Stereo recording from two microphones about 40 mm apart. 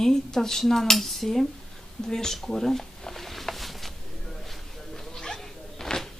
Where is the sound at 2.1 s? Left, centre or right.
Centre.